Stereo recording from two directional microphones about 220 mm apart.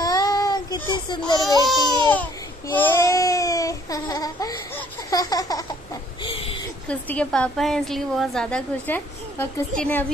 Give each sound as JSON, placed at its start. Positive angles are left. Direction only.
{"t": 0.0, "sound": "baby cry", "side_deg": 15}
{"t": 1.7, "sound": "a woman's voice", "side_deg": 5}
{"t": 2.8, "sound": "baby cry", "side_deg": 10}
{"t": 6.2, "sound": "a sound", "side_deg": 25}
{"t": 6.9, "sound": "a woman's voice", "side_deg": 5}